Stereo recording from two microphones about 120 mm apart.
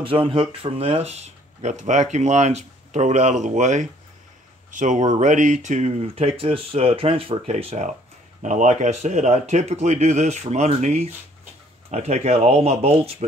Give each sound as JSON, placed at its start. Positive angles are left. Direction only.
{"t": 0.0, "sound": "speech", "side_deg": -50}
{"t": 7.5, "sound": "speech", "side_deg": -80}
{"t": 8.4, "sound": "speech", "side_deg": -90}